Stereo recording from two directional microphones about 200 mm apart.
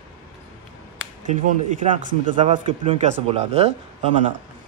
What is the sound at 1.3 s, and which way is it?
Speech, 40° right (ahead or behind).